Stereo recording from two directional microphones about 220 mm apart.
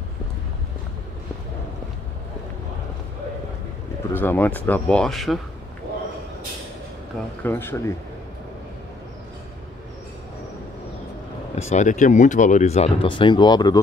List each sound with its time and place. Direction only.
4.1 s speech: 10° left (ahead or behind)
7.4 s speech: 10° left (ahead or behind)
11.5 s speech: 35° left (ahead or behind)